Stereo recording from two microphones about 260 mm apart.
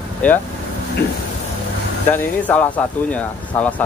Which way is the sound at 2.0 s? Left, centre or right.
Centre.